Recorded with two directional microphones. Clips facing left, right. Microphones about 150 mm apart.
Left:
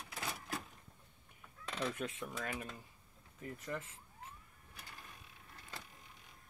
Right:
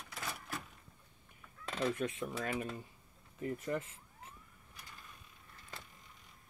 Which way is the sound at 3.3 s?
10° right (ahead or behind).